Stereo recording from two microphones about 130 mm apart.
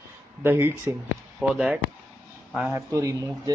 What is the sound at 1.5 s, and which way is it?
Speech, 5° right (ahead or behind).